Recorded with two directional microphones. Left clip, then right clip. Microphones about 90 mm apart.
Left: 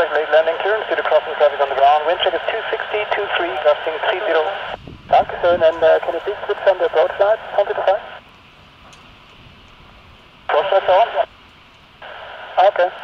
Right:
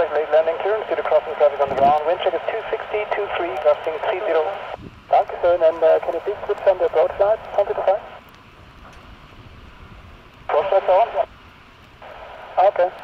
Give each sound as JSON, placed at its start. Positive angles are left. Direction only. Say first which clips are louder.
{"t": 0.0, "sound": "radio", "louder": "left 3 dB", "side_deg": 20}
{"t": 10.4, "sound": "radio", "louder": "left 2 dB", "side_deg": 20}